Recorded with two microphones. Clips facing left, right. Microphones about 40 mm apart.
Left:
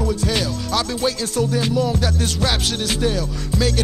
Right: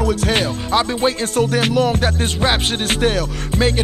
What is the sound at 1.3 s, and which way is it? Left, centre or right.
Music, right.